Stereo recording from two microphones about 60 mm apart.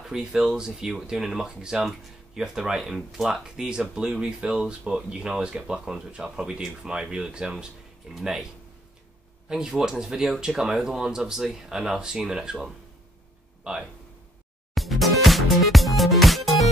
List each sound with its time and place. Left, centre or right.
0.0 s speech: centre
9.5 s speech: centre
14.7 s music: centre